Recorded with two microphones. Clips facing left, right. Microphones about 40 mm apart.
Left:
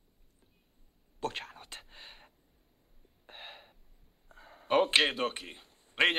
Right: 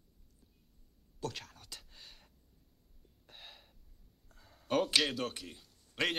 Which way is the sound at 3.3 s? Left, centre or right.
Left.